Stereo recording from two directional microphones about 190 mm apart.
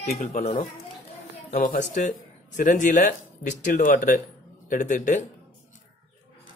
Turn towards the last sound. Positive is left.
turn(degrees=40)  # may be behind; listen again after turning